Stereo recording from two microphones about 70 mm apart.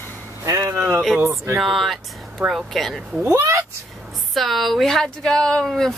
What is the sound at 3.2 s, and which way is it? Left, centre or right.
Speech, right.